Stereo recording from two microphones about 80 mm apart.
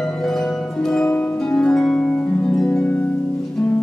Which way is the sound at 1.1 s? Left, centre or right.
Left.